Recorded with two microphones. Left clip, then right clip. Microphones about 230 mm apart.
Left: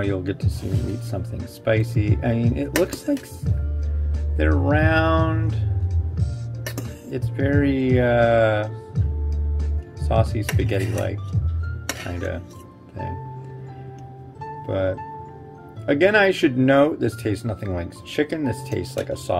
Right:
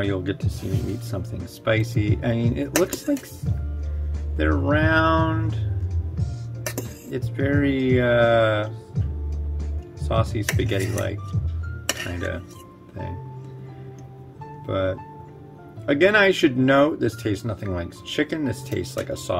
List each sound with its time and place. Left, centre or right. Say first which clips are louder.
0.0 s speech: even; centre
4.4 s speech: left 1 dB; centre
7.1 s speech: left 1 dB; centre
10.0 s speech: left 1 dB; centre
14.7 s speech: left 1 dB; centre